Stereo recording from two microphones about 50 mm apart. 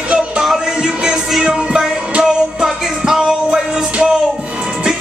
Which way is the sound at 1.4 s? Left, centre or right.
Centre.